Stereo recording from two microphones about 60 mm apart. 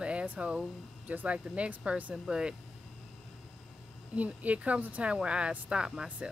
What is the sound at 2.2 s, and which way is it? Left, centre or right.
Speech, centre.